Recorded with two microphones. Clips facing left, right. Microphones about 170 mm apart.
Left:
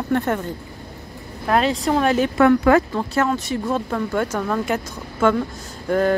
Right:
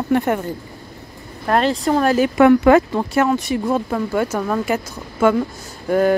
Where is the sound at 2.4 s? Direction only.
20° right (ahead or behind).